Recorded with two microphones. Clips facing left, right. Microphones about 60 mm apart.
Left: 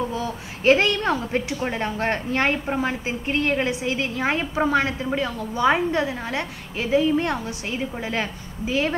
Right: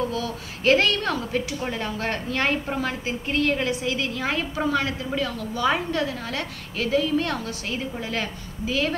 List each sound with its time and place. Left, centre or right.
0.0 s a woman's voice: left